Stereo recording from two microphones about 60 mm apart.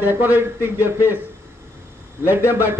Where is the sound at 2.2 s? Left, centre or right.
Right.